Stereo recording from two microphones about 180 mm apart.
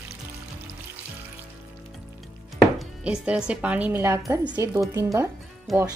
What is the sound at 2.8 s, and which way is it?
Speech, 5° right (ahead or behind).